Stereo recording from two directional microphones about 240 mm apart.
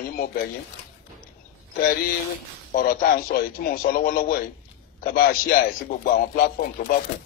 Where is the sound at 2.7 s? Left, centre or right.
Left.